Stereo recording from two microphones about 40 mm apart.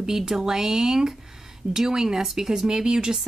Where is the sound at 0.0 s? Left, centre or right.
Centre.